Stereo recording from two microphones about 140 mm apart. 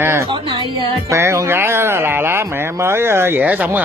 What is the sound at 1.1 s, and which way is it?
Speech, 20° right (ahead or behind).